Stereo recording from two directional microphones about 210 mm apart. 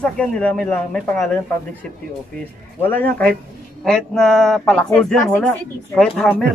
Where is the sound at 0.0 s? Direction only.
5° left (ahead or behind).